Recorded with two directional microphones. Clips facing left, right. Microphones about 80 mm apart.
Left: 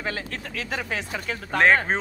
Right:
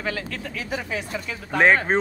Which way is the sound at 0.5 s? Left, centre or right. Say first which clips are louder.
Even; left.